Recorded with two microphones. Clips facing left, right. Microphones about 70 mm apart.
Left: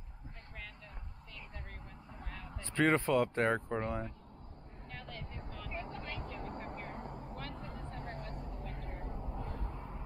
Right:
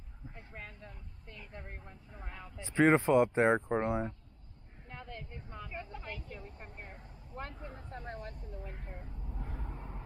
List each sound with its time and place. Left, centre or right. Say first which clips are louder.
2.2 s speech: right 1 dB; centre
4.9 s vehicle: right 1 dB; centre
6.2 s vehicle: left 6 dB; left
7.7 s a sound: even; left
8.8 s vehicle: left 4 dB; left